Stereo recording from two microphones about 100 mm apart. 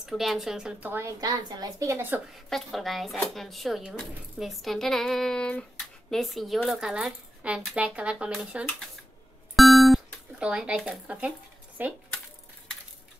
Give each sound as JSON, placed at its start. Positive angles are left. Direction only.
{"t": 0.0, "sound": "speech", "side_deg": 0}
{"t": 0.8, "sound": "a woman's voice", "side_deg": -25}
{"t": 1.2, "sound": "a woman's voice", "side_deg": -35}
{"t": 2.0, "sound": "a woman's voice", "side_deg": -20}
{"t": 2.3, "sound": "speech", "side_deg": 0}
{"t": 9.6, "sound": "beep", "side_deg": 0}
{"t": 11.8, "sound": "speech", "side_deg": -15}